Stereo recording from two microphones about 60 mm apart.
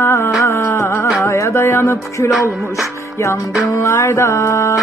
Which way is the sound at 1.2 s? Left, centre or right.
Left.